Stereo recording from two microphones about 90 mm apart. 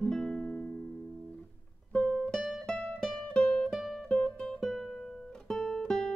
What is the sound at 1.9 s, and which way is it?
Music, 15° left (ahead or behind).